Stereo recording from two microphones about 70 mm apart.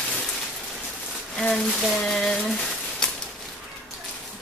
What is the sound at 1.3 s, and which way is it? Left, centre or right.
Speech, centre.